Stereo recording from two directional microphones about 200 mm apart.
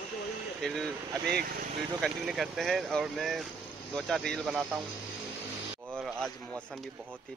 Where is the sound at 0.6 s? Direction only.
Centre (ahead or behind).